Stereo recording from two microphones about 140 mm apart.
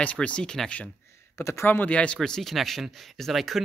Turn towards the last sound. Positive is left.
turn(degrees=0)  # may be behind; listen again after turning